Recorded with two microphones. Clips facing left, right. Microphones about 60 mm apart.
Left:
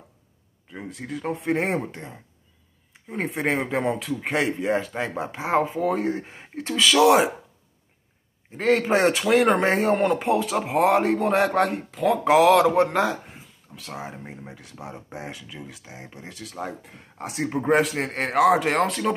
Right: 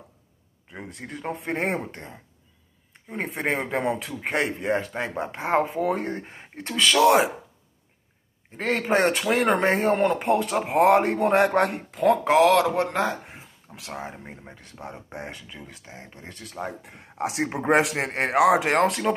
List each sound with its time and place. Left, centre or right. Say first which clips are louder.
0.7 s a man's voice: left 4 dB; centre
8.5 s a man's voice: left 3 dB; centre
12.4 s a man's voice: left 5 dB; centre
13.8 s a man's voice: even; centre
17.4 s speech: left 4 dB; right
17.9 s speech: right 1 dB; centre